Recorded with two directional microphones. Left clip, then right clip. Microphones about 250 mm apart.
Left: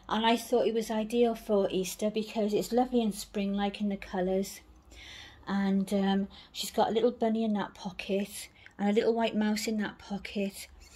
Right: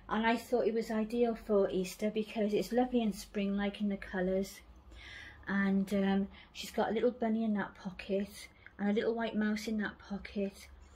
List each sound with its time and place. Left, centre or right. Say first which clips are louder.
0.0 s speech: left 5 dB; left